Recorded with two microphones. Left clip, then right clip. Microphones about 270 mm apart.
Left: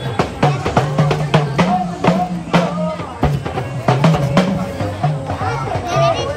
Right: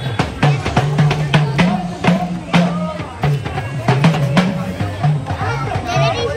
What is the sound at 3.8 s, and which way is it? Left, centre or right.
Music, left.